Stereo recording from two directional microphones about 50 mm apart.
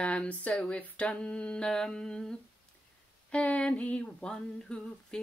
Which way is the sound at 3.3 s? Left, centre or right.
Left.